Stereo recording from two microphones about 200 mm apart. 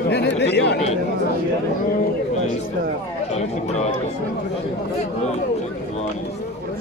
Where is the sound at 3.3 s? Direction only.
35° left (ahead or behind).